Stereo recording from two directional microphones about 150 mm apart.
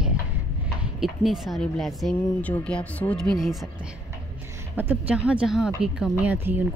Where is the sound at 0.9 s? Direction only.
5° right (ahead or behind).